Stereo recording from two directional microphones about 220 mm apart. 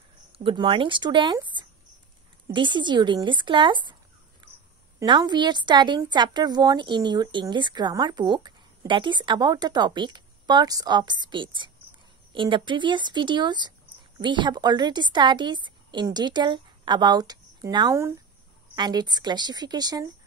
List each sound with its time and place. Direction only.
0.4 s a woman's voice: 25° right (ahead or behind)
4.4 s a sound: 20° right (ahead or behind)
5.0 s a woman's voice: 20° right (ahead or behind)